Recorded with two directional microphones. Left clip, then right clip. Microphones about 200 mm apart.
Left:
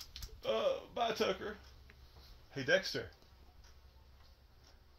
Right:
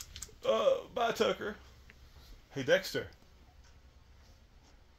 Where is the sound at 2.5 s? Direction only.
50° right (ahead or behind).